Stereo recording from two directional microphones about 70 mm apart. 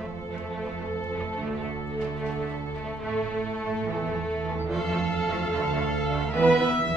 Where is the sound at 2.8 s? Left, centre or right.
Centre.